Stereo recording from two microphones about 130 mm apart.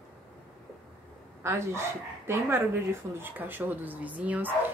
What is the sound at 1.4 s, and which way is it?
Speech, 20° right (ahead or behind).